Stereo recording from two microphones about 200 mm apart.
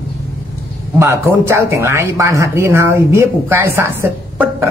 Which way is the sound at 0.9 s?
15° right (ahead or behind).